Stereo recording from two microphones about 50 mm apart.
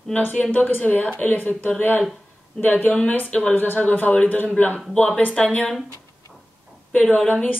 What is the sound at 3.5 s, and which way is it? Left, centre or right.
Speech, left.